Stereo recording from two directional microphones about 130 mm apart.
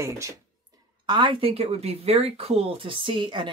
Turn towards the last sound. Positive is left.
turn(degrees=-40)  # may be behind; listen again after turning